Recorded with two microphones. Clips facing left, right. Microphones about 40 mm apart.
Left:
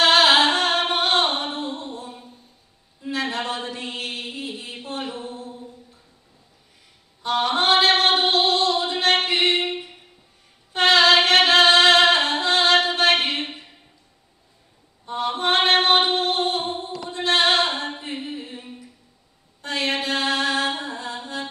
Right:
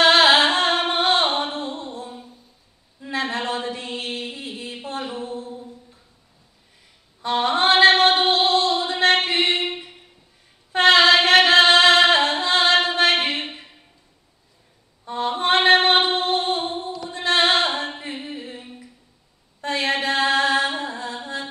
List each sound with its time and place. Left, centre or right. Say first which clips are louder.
0.0 s music: right 1 dB; right
1.6 s a sound: even; right
3.7 s mantra: right 1 dB; left
4.6 s a sound: right 1 dB; right
5.3 s a capella: right 4 dB; right
7.2 s female singing: right 1 dB; right
10.7 s singing: right 2 dB; right
15.1 s mantra: right 1 dB; right
17.1 s a sound: even; right
18.2 s music: left 1 dB; right
19.6 s mantra: right 2 dB; right